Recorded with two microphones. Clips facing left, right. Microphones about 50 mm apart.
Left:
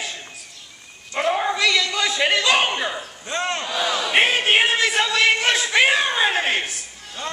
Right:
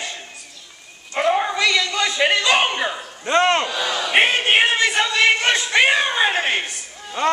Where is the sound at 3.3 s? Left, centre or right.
Right.